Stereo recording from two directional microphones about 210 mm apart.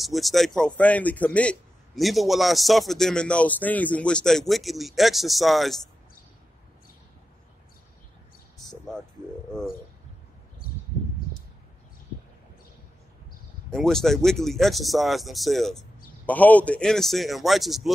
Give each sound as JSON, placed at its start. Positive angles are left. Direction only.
{"t": 0.0, "sound": "a man's voice", "side_deg": 0}
{"t": 8.5, "sound": "music", "side_deg": 0}
{"t": 13.7, "sound": "a man's voice", "side_deg": 0}